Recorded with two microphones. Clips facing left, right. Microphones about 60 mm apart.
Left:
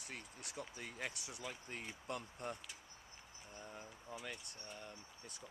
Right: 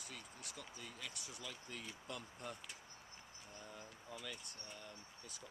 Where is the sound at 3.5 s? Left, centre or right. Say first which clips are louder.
Left 2 dB; left.